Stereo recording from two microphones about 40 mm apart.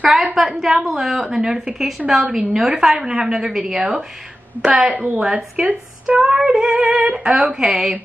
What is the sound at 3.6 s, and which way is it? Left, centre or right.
Synthetic singing, right.